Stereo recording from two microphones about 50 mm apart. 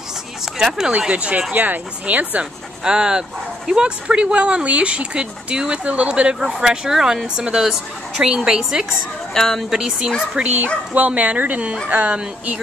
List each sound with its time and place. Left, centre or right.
0.6 s speech: centre
0.9 s speech: right
1.5 s speech: right
2.8 s speech: centre
9.3 s speech: centre
9.7 s speech: centre
10.3 s speech: right